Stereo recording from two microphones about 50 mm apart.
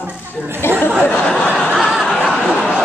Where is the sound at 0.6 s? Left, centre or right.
Left.